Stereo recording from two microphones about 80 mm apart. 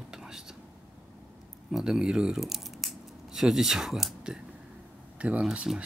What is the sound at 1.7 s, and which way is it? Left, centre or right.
Speech, centre.